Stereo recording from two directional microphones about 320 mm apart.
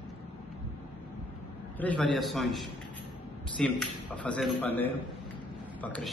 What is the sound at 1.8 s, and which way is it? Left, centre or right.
A man's voice, centre.